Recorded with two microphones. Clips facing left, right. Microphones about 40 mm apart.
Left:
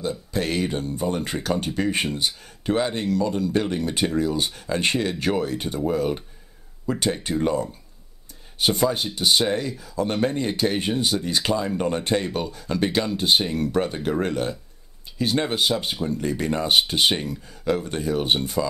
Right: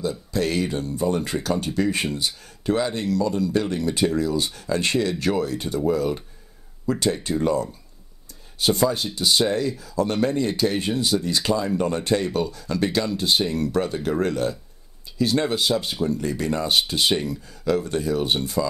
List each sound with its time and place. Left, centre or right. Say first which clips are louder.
0.0 s speech: right 2 dB; left